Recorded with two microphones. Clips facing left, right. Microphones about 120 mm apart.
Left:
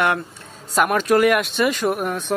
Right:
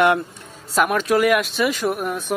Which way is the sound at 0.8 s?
Centre (ahead or behind).